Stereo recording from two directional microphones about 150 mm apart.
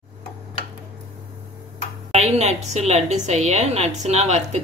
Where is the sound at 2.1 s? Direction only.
45° right (ahead or behind).